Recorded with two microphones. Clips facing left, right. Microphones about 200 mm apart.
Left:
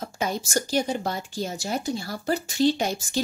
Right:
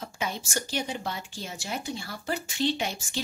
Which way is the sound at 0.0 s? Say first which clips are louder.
Left 5 dB; 40° left (ahead or behind).